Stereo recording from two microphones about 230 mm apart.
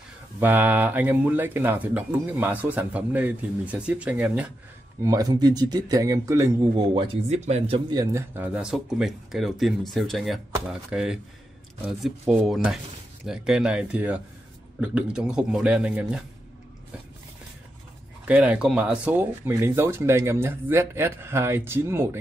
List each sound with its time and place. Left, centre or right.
0.4 s speech: centre; by 7.8 s right
7.9 s speech: centre
18.2 s speech: centre